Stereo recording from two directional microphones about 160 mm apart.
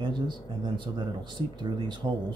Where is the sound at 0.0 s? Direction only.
30° right (ahead or behind).